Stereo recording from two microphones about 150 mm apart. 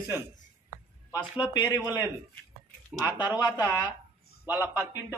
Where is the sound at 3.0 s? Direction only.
30° left (ahead or behind).